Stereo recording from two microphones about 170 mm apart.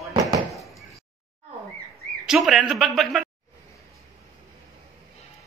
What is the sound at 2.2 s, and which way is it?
A man's voice, centre (ahead or behind).